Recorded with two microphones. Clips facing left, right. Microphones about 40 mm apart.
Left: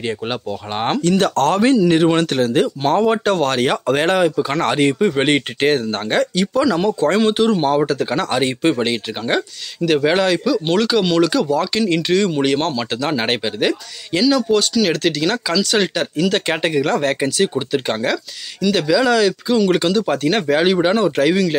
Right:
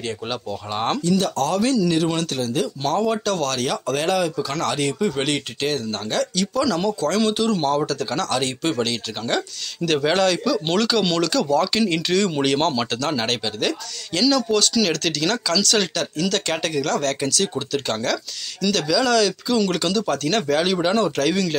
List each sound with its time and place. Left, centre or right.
0.0 s speech: left
1.0 s speech: left
1.6 s speech: left
9.8 s speech: centre
12.9 s speech: centre